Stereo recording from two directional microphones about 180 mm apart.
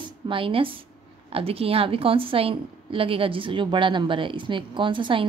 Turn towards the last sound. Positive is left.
turn(degrees=-25)  # may be behind; listen again after turning